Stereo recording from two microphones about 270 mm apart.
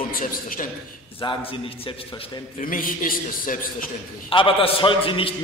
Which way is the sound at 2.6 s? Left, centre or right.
Left.